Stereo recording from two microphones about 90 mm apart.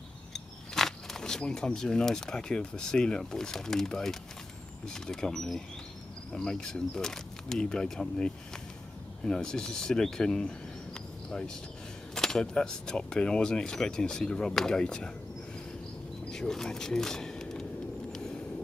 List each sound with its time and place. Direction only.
0.3 s speech: 5° left (ahead or behind)
16.3 s speech: 5° left (ahead or behind)
18.1 s a sound: 5° left (ahead or behind)